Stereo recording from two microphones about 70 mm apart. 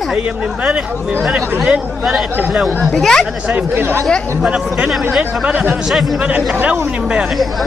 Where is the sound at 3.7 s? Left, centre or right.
Right.